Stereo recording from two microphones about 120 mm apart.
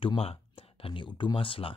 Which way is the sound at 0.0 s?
50° left (ahead or behind).